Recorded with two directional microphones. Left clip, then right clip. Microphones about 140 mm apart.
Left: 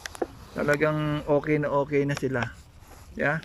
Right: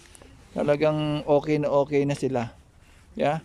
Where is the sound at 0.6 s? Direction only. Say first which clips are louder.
Right 2 dB; 25° right (ahead or behind).